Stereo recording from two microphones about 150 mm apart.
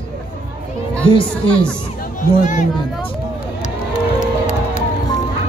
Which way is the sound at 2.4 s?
55° left (ahead or behind).